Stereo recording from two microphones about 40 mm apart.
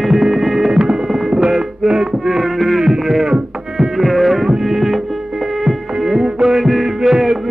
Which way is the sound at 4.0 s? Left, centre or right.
Centre.